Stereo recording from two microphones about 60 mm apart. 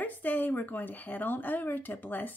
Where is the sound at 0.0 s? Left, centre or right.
Left.